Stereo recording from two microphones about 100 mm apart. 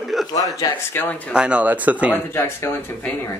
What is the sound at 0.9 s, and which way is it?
Speech, 20° left (ahead or behind).